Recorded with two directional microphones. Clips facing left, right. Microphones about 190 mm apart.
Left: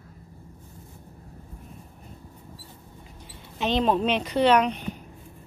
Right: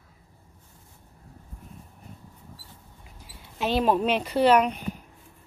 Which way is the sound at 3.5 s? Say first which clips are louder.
Even; 5° right (ahead or behind).